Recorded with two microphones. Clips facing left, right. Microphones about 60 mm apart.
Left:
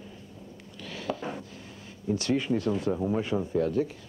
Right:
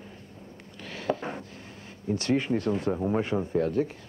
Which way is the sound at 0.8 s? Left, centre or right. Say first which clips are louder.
Right 3 dB; right.